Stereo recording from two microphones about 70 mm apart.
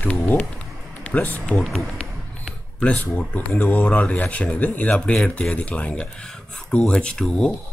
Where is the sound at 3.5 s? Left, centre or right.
Left.